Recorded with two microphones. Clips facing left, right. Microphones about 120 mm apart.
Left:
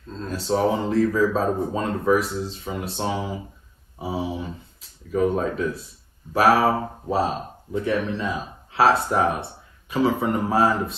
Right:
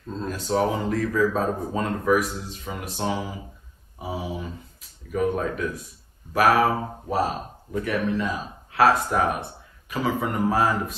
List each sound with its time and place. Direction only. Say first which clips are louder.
0.3 s speech: left 2 dB; 30° left (ahead or behind)